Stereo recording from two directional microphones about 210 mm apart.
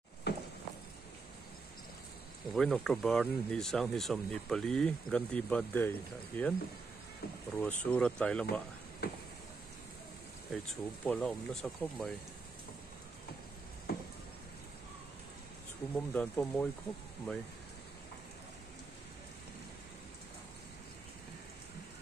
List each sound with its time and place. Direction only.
0.3 s walk: 55° left (ahead or behind)
2.5 s speech: 5° left (ahead or behind)
7.5 s speech: 5° left (ahead or behind)
9.0 s a sound: 50° left (ahead or behind)
10.5 s speech: 5° left (ahead or behind)
16.1 s speech: 5° left (ahead or behind)